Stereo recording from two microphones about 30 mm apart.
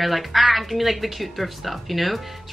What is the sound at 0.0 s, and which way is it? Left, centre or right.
Speech, centre.